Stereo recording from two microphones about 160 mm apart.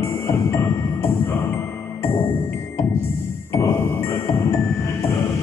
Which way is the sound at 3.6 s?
15° left (ahead or behind).